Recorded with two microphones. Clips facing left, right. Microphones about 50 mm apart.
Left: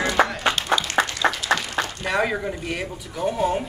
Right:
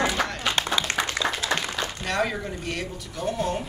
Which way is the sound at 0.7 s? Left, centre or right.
Left.